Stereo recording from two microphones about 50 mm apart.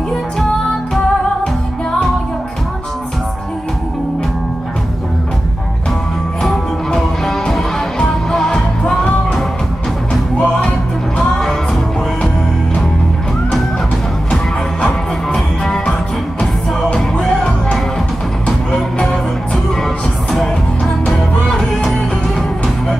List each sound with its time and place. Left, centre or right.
1.4 s music: centre
6.4 s music: centre
10.3 s music: left
15.2 s music: centre
19.5 s music: centre
21.1 s music: centre